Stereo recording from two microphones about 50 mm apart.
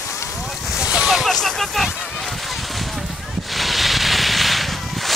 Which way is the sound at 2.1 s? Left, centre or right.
Centre.